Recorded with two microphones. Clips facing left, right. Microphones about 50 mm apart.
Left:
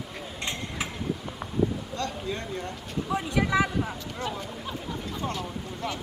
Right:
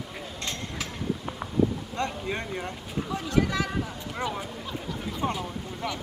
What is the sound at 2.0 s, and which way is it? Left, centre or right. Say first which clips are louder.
Speech: right 3 dB; right.